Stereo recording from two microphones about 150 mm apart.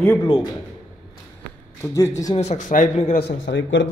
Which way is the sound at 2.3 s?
50° left (ahead or behind).